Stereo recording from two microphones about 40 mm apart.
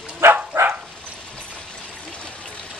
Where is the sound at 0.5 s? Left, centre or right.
Right.